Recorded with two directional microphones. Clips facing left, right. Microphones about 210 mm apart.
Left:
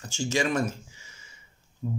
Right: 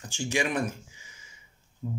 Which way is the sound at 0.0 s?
15° right (ahead or behind).